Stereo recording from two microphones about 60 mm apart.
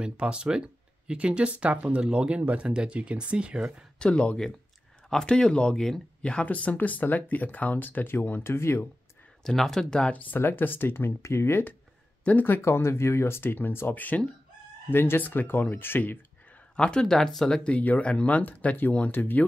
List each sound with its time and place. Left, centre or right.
0.0 s speech: centre
4.0 s speech: centre
6.4 s speech: left
9.4 s speech: centre
10.4 s speech: left
12.3 s speech: left
16.7 s speech: centre
17.6 s speech: left